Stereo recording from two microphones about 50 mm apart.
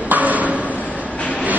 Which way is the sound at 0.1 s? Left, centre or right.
Right.